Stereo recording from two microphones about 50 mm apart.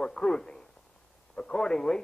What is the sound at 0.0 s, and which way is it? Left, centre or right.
A man's voice, centre.